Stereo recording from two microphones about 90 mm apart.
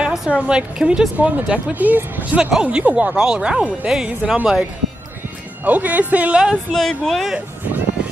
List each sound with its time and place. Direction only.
0.0 s speech: 10° right (ahead or behind)
5.7 s speech: 15° right (ahead or behind)
6.7 s speech: 5° left (ahead or behind)